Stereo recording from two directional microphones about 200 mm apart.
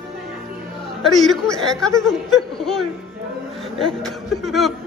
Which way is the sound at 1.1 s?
Centre (ahead or behind).